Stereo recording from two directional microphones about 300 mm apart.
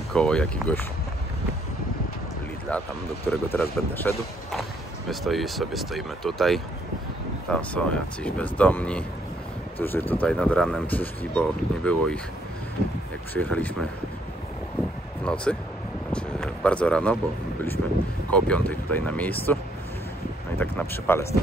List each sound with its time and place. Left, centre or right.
0.1 s speech: centre
2.7 s speech: centre
13.3 s speech: centre
15.2 s speech: centre
18.3 s speech: centre